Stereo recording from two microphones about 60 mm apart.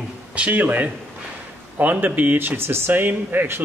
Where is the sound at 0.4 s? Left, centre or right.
Right.